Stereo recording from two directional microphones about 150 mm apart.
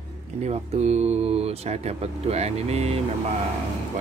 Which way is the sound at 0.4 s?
45° right (ahead or behind).